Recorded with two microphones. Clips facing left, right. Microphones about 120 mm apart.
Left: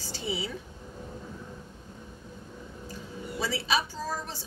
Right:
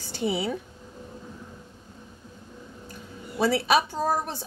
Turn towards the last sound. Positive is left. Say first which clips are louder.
# right 8 dB
turn(degrees=-55)  # may be behind; listen again after turning